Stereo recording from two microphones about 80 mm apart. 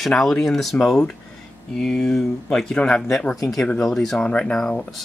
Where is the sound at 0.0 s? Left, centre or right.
Centre.